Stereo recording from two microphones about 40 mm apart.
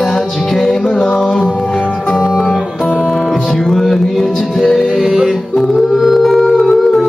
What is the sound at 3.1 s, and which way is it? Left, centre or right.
Music, centre.